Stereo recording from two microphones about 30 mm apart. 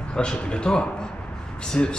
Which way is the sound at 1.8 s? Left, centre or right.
Left.